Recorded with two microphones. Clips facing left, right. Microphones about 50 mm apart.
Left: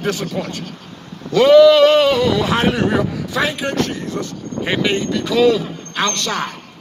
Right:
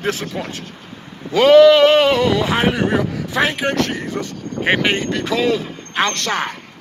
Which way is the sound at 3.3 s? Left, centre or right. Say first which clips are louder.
Right 2 dB; right.